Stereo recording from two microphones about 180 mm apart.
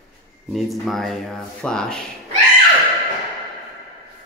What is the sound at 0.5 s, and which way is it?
Speech, centre (ahead or behind).